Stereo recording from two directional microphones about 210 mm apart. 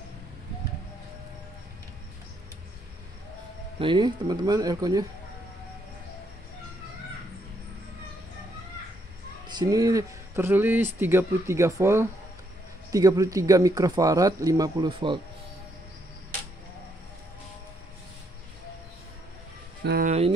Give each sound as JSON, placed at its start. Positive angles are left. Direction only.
{"t": 3.8, "sound": "speech", "side_deg": -20}
{"t": 9.5, "sound": "speech", "side_deg": -20}
{"t": 19.8, "sound": "speech", "side_deg": -50}
{"t": 20.1, "sound": "music", "side_deg": -30}